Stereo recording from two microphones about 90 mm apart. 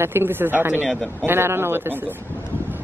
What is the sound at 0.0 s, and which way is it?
Speech, 25° right (ahead or behind).